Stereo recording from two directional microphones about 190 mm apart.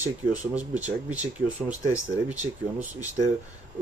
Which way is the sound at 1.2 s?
40° right (ahead or behind).